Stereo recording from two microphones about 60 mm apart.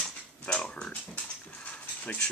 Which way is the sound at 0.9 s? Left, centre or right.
Left.